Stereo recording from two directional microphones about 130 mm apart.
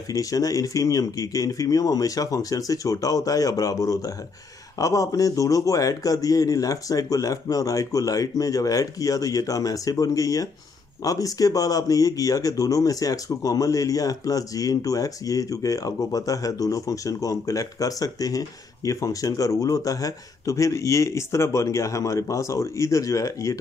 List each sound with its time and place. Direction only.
0.1 s speech: 25° left (ahead or behind)